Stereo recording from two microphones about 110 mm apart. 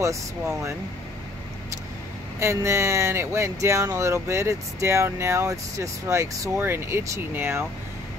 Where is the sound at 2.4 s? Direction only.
25° right (ahead or behind).